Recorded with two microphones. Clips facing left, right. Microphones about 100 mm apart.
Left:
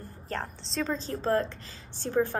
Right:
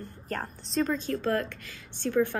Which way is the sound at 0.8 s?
30° left (ahead or behind).